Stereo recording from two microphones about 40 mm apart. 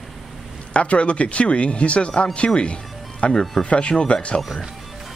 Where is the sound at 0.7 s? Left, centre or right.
Left.